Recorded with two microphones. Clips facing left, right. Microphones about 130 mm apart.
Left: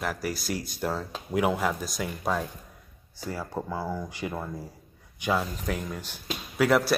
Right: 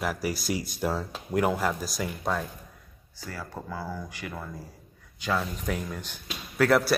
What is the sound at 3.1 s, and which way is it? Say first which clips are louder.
Speech: left 5 dB; 25° left (ahead or behind).